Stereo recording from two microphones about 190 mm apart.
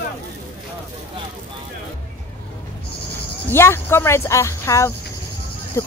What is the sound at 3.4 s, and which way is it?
Speech, 15° left (ahead or behind).